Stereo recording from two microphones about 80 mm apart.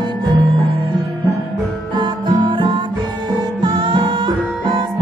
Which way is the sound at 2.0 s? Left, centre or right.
Right.